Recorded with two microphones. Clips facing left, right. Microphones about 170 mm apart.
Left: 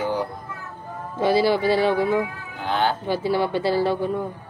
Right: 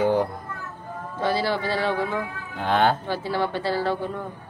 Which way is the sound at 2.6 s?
60° right (ahead or behind).